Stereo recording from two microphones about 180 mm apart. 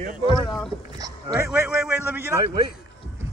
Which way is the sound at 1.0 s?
20° right (ahead or behind).